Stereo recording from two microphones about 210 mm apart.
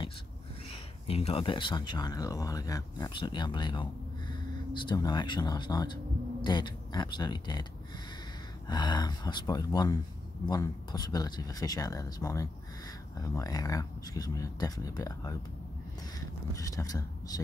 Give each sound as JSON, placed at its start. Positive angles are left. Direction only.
{"t": 1.0, "sound": "speech", "side_deg": 25}
{"t": 8.6, "sound": "speech", "side_deg": 20}